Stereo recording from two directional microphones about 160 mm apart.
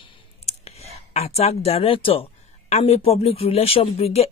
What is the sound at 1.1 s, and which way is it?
A woman's voice, 40° left (ahead or behind).